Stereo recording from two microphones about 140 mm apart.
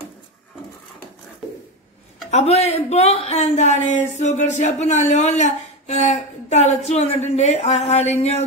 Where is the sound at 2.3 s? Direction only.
50° left (ahead or behind).